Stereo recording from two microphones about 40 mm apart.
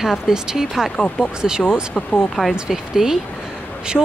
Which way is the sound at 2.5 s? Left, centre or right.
Centre.